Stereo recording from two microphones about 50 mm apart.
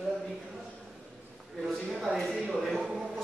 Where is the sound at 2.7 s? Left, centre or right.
Centre.